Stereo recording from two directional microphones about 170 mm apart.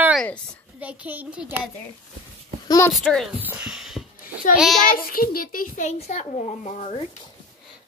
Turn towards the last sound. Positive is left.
turn(degrees=40)  # may be behind; listen again after turning